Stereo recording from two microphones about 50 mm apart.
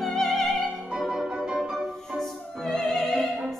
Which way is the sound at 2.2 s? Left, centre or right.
Centre.